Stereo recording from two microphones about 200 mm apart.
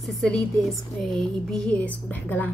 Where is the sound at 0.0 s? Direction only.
Centre (ahead or behind).